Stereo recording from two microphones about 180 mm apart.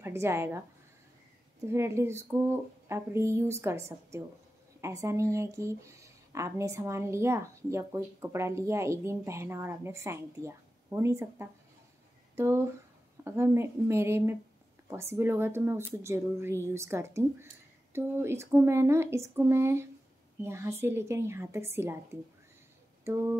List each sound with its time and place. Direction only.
0.0 s a woman's voice: 15° right (ahead or behind)
1.7 s speech: 15° right (ahead or behind)